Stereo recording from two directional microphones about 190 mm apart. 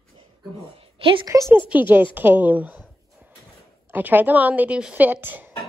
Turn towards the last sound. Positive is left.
turn(degrees=-10)  # may be behind; listen again after turning